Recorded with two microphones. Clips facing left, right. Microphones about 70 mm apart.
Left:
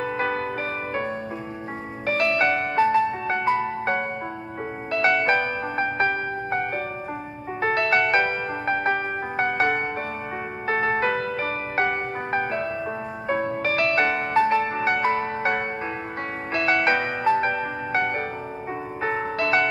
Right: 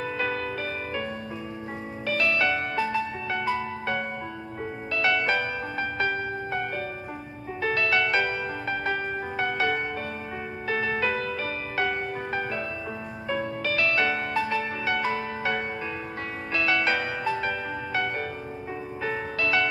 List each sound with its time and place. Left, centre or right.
0.0 s music: left
2.0 s music: left